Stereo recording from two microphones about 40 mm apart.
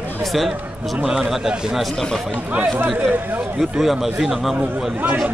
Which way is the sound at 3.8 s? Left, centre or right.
Centre.